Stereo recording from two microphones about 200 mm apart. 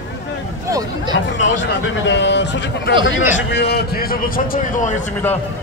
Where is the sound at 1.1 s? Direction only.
65° left (ahead or behind); by 5.1 s 40° left (ahead or behind).